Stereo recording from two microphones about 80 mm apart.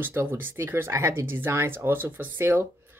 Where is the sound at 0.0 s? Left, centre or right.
Right.